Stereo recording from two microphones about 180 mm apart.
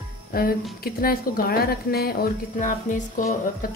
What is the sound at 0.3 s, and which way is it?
Music, 55° left (ahead or behind).